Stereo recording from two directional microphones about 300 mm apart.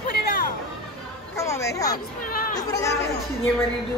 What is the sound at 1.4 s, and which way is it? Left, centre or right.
Speech, centre.